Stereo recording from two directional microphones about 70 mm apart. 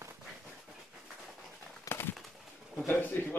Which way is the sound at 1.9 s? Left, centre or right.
Left.